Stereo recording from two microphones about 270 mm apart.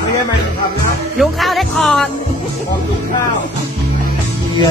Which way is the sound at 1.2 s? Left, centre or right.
Centre.